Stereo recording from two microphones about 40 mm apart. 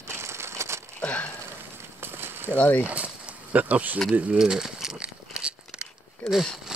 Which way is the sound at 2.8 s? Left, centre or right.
Right.